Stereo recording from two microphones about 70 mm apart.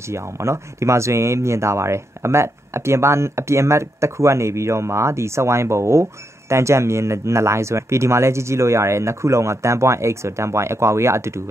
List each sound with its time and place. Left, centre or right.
0.1 s speech: right